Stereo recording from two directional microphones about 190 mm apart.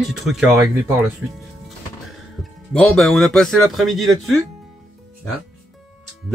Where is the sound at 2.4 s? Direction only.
Centre (ahead or behind).